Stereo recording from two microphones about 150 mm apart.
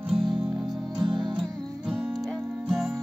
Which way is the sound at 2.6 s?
5° right (ahead or behind).